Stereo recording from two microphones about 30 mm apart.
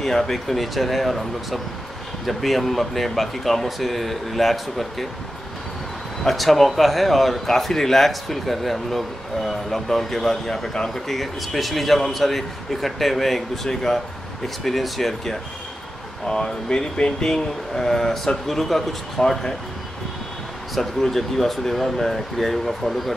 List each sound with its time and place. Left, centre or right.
0.0 s speech: centre
6.2 s speech: centre
16.3 s speech: left
17.7 s speech: centre
21.0 s speech: centre